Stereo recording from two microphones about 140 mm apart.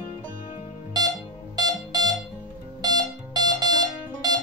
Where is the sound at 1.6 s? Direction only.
30° right (ahead or behind).